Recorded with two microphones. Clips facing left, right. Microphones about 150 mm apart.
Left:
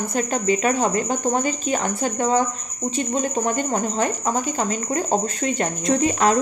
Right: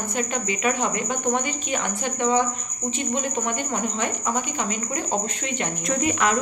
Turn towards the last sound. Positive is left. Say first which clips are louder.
# left 4 dB
turn(degrees=30)  # may be behind; listen again after turning